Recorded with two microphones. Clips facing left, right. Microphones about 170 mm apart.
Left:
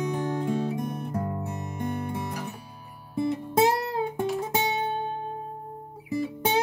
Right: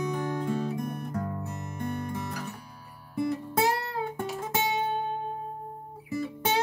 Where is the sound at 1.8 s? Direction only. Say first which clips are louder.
Left 2 dB; 15° left (ahead or behind).